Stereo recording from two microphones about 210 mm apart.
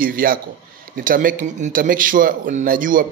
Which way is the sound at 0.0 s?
45° right (ahead or behind).